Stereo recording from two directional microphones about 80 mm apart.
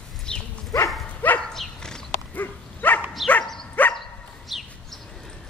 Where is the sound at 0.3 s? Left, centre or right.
Centre.